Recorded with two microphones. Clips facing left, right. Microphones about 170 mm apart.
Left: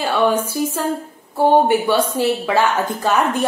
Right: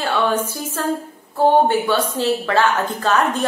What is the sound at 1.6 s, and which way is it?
A woman's voice, 10° left (ahead or behind).